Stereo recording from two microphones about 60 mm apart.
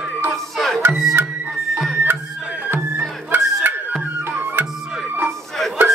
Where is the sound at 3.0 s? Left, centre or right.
Right.